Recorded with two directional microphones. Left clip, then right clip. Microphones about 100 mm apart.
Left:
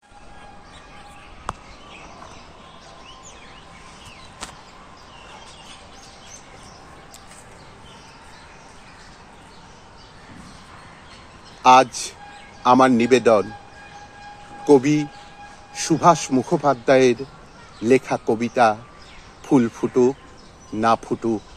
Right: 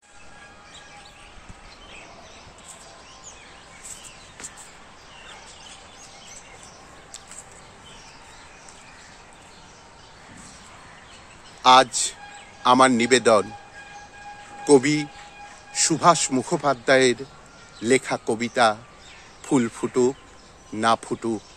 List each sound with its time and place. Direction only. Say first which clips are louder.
11.6 s a man's voice: left 2 dB; 10° right (ahead or behind)
14.6 s a man's voice: left 2 dB; 15° right (ahead or behind)